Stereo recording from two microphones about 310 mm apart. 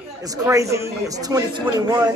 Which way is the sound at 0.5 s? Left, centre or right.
Centre.